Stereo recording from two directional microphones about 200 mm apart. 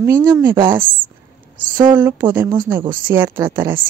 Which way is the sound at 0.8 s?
45° right (ahead or behind).